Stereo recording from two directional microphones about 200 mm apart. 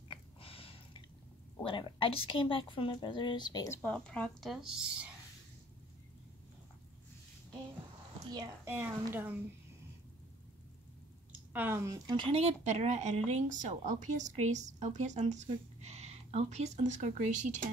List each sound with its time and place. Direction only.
0.1 s a sound: 25° left (ahead or behind)
1.6 s a woman's voice: 25° left (ahead or behind); by 4.7 s centre (ahead or behind)
8.3 s a child's voice: 15° right (ahead or behind)
11.5 s speech: 10° right (ahead or behind); by 17.6 s 40° right (ahead or behind)